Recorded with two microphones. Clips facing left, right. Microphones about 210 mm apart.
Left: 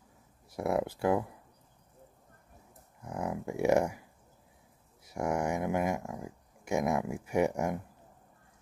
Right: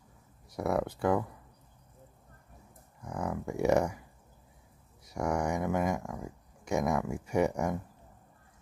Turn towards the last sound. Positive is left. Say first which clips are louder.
# even
turn(degrees=10)  # may be behind; listen again after turning